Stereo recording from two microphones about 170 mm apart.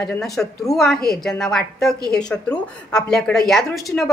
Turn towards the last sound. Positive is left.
turn(degrees=0)  # may be behind; listen again after turning